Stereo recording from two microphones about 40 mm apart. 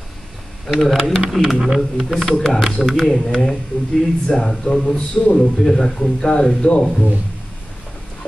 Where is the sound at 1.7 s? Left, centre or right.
Centre.